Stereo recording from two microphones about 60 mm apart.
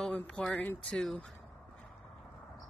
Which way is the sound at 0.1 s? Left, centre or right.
Left.